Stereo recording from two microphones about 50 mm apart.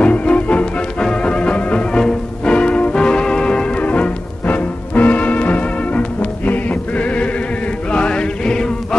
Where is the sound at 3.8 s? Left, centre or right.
Left.